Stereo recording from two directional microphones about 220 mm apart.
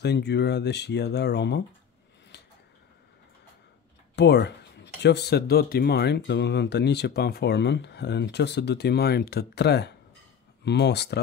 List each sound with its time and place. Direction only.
0.0 s speech: 50° left (ahead or behind)
2.3 s a sound: 50° left (ahead or behind)
4.1 s speech: 50° left (ahead or behind)